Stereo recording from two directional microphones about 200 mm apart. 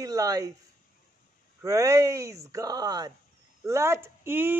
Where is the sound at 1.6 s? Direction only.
15° right (ahead or behind).